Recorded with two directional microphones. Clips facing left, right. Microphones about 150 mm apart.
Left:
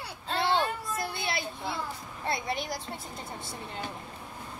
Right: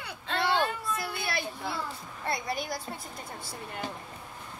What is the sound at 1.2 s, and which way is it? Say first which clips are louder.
A woman's voice: even; 20° left (ahead or behind).